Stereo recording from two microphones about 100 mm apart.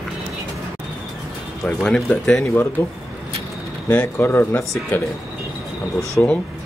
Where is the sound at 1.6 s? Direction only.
10° left (ahead or behind).